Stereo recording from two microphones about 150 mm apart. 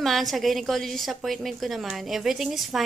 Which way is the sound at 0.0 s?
Centre (ahead or behind).